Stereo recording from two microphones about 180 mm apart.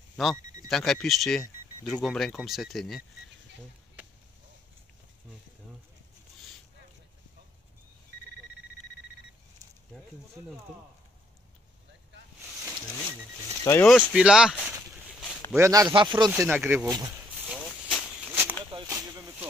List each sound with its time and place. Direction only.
0.2 s speech: centre (ahead or behind)
13.7 s speech: 10° left (ahead or behind)
14.1 s speech: 5° right (ahead or behind)
15.5 s speech: 15° right (ahead or behind)
16.3 s speech: 10° right (ahead or behind)
17.8 s a sound: 10° right (ahead or behind)
18.7 s a sound: 30° right (ahead or behind)